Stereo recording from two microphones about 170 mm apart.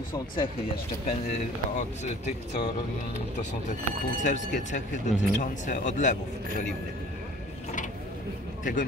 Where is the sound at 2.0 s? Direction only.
40° left (ahead or behind).